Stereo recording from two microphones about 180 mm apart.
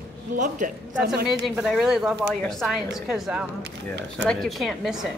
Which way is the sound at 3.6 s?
75° right (ahead or behind).